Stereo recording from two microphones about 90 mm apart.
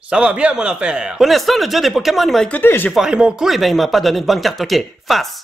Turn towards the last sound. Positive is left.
turn(degrees=0)  # may be behind; listen again after turning